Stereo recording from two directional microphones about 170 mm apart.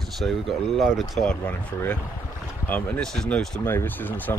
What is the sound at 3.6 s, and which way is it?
Speech, 10° left (ahead or behind).